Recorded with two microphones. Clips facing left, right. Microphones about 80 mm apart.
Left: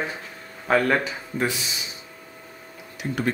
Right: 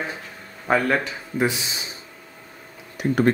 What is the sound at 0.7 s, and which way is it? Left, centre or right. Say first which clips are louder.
Speech: even; centre.